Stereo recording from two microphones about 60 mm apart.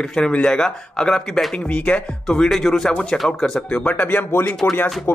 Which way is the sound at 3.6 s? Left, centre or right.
Centre.